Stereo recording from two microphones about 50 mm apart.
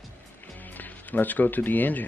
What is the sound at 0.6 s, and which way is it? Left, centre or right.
Speech, left.